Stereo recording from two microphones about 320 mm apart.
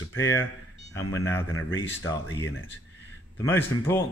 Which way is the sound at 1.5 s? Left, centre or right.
Left.